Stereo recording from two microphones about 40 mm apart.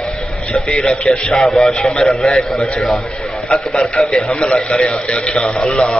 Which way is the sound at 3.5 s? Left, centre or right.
Left.